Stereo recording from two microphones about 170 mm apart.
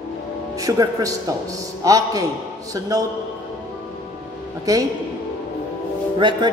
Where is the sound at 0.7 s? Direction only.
20° right (ahead or behind).